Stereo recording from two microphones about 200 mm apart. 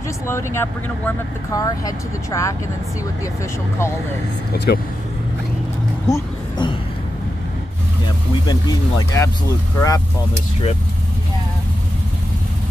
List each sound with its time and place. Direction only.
0.3 s speech: 15° left (ahead or behind)
4.5 s speech: 50° left (ahead or behind)
6.0 s a sound: 15° left (ahead or behind)
8.5 s speech: 20° left (ahead or behind)